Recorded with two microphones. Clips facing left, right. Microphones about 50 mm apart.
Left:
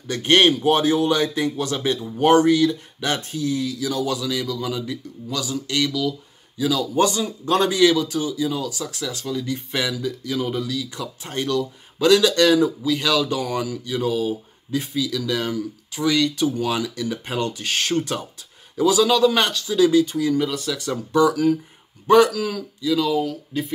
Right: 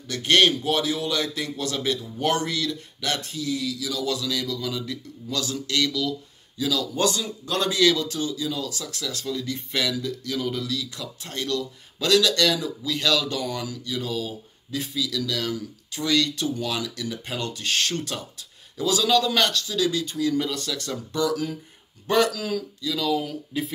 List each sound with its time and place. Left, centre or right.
0.1 s speech: left
4.1 s a man's voice: centre
7.7 s speech: centre
20.3 s a man's voice: centre
23.2 s speech: centre